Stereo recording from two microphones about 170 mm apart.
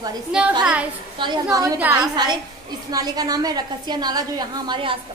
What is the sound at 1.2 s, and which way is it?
Speech, 25° right (ahead or behind).